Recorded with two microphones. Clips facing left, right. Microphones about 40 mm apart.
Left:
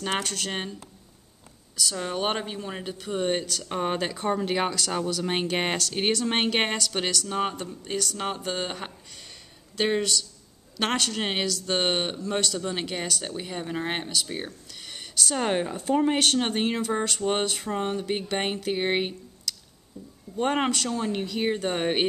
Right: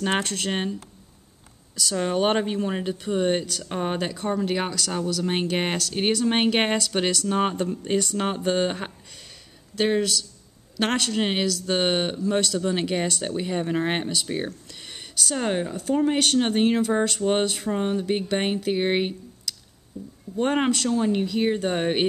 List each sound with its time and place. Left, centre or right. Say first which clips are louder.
0.1 s speech: right 4 dB; centre
2.5 s speech: right 7 dB; centre
9.8 s speech: right 2 dB; centre
13.0 s speech: right 5 dB; centre
15.1 s speech: even; centre
19.9 s speech: right 5 dB; centre
20.3 s speech: right 2 dB; centre